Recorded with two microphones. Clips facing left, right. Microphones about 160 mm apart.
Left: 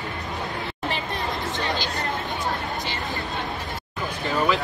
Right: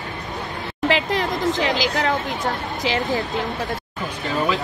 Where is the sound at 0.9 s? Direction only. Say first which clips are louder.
Right 9 dB; 90° right.